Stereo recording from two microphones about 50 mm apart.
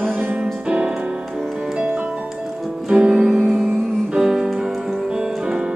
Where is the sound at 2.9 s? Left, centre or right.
Centre.